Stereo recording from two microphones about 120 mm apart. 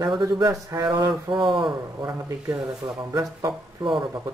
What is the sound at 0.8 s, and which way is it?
Speech, 40° right (ahead or behind).